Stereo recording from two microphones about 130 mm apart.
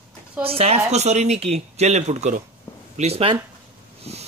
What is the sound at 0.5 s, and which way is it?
Speech, 50° right (ahead or behind).